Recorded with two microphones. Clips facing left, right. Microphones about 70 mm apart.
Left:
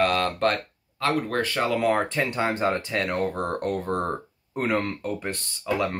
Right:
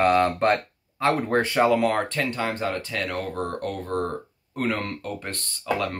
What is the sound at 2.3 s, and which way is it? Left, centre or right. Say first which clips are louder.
Speech: left 3 dB; left.